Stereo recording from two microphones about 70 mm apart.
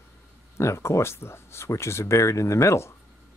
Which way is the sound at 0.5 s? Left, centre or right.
Left.